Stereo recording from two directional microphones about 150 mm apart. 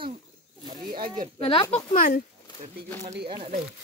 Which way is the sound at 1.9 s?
70° left (ahead or behind).